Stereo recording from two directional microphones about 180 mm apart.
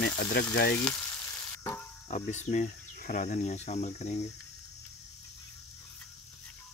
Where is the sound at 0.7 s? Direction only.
5° left (ahead or behind).